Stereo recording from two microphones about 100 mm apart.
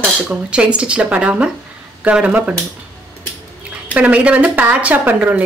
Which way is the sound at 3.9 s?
15° right (ahead or behind).